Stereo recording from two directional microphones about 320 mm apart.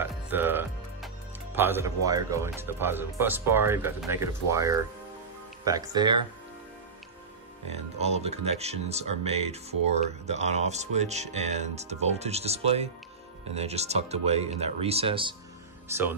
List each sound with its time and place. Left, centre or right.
0.0 s speech: centre
7.7 s speech: centre